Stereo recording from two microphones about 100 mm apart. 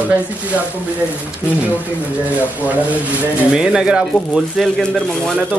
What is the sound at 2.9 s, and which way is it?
Speech, 10° right (ahead or behind).